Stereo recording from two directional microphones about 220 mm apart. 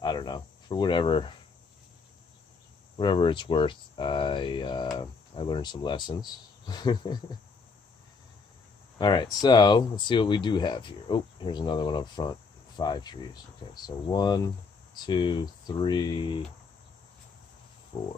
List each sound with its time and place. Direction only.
0.0 s cricket: 20° left (ahead or behind)
3.0 s speech: 20° left (ahead or behind)
8.9 s speech: 20° left (ahead or behind)
17.9 s a sound: 30° left (ahead or behind)